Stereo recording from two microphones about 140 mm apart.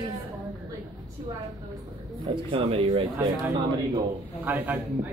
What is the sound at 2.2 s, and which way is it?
Speech, 40° right (ahead or behind).